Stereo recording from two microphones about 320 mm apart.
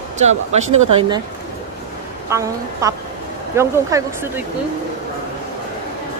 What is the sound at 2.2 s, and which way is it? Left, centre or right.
Speech, centre.